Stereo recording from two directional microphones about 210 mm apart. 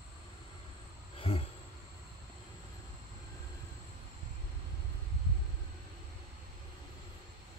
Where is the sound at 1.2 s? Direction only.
25° left (ahead or behind).